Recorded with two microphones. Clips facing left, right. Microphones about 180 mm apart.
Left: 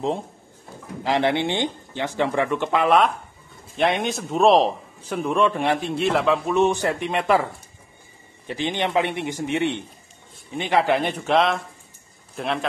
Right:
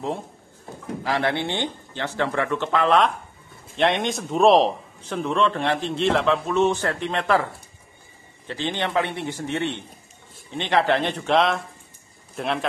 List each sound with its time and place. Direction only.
1.0 s a man's voice: 20° left (ahead or behind)
8.5 s a man's voice: 15° left (ahead or behind)